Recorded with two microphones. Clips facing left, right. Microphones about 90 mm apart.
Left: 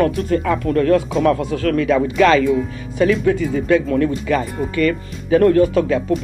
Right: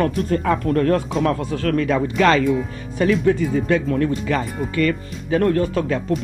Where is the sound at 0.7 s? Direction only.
35° right (ahead or behind).